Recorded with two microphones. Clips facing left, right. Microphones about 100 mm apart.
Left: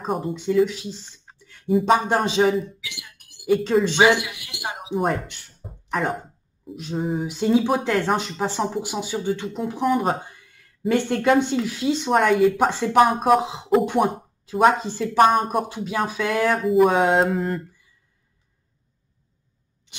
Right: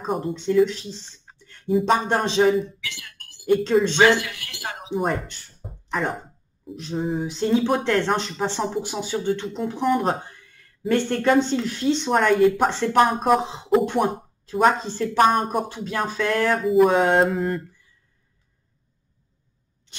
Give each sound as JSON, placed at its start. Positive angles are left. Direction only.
{"t": 0.0, "sound": "speech", "side_deg": 0}
{"t": 2.9, "sound": "a sound", "side_deg": 15}
{"t": 3.8, "sound": "speech", "side_deg": 15}
{"t": 4.9, "sound": "speech", "side_deg": 0}
{"t": 5.6, "sound": "a sound", "side_deg": 0}
{"t": 7.2, "sound": "speech", "side_deg": 10}
{"t": 15.7, "sound": "speech", "side_deg": 15}